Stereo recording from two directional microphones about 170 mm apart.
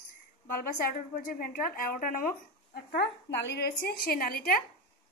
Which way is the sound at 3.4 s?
75° left (ahead or behind).